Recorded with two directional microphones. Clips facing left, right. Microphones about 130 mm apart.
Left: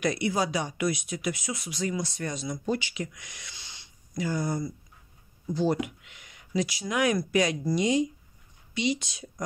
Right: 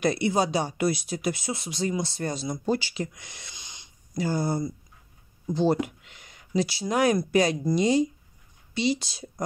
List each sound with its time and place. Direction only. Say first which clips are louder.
0.0 s speech: right 3 dB; 30° right (ahead or behind)
3.5 s wheeze: right 1 dB; 15° right (ahead or behind)
4.2 s speech: right 3 dB; 30° right (ahead or behind)